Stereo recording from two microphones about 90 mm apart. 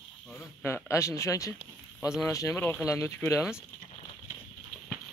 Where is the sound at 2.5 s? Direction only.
25° left (ahead or behind).